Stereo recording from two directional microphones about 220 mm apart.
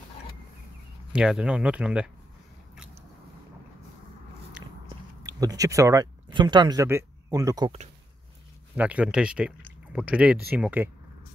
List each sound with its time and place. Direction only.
1.1 s speech: 5° right (ahead or behind)
2.7 s biting: 5° right (ahead or behind)
5.2 s speech: 15° right (ahead or behind)
8.7 s speech: 5° right (ahead or behind)